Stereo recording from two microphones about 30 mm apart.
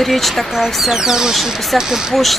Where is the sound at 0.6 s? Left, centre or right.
Centre.